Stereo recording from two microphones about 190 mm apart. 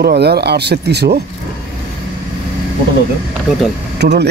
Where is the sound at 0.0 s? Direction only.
60° right (ahead or behind).